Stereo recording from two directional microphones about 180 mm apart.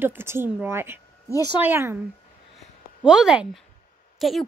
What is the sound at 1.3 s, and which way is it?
Speech, 20° left (ahead or behind).